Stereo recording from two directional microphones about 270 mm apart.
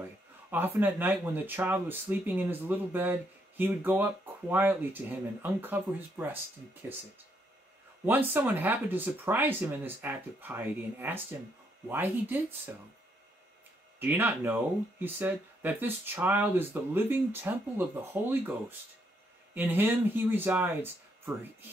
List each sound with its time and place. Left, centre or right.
0.5 s speech: centre
8.3 s speech: centre
13.9 s speech: centre